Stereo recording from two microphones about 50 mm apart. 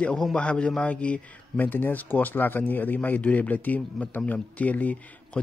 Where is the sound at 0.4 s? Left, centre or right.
Left.